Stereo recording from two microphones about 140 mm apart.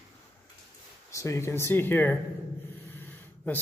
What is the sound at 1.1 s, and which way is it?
A man's voice, 20° left (ahead or behind).